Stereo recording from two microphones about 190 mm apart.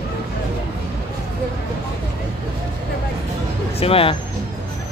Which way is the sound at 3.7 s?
30° left (ahead or behind).